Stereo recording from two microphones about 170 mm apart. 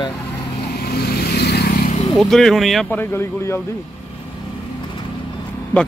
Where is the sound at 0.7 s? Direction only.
70° left (ahead or behind).